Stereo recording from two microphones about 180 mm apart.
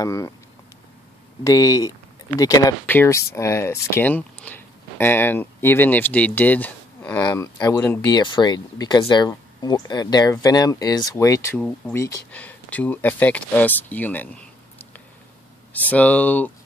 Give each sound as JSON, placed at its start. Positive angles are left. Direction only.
{"t": 0.0, "sound": "speech", "side_deg": 15}
{"t": 1.4, "sound": "speech", "side_deg": 20}
{"t": 7.5, "sound": "speech", "side_deg": 20}
{"t": 11.5, "sound": "speech", "side_deg": 5}
{"t": 15.7, "sound": "speech", "side_deg": 10}